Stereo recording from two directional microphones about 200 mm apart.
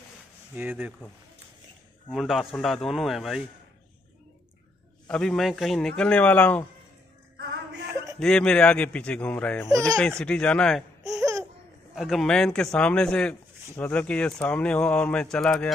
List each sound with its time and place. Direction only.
0.6 s speech: 10° right (ahead or behind)
2.0 s speech: centre (ahead or behind)
5.0 s speech: 5° left (ahead or behind)
7.3 s music: 60° right (ahead or behind)
8.2 s speech: 5° left (ahead or behind)
11.1 s laughter: 15° right (ahead or behind)
11.9 s speech: centre (ahead or behind)